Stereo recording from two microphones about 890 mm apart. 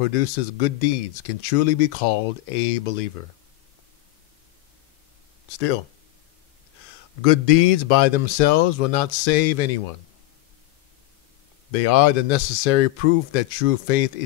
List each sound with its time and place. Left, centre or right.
0.0 s speech: left
7.2 s speech: left
11.7 s speech: left